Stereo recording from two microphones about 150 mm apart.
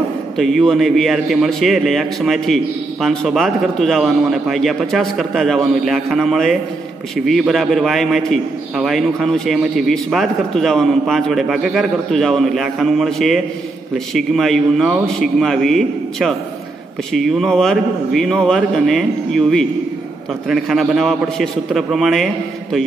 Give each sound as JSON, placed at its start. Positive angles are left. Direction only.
{"t": 0.4, "sound": "a man's voice", "side_deg": 0}